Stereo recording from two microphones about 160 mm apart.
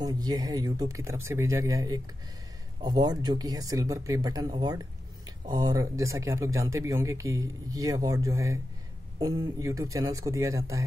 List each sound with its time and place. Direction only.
0.0 s speech: 25° right (ahead or behind)